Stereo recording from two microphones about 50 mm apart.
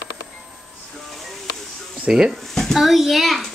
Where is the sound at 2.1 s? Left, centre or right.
Centre.